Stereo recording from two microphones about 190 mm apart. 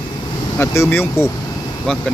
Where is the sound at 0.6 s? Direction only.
10° left (ahead or behind).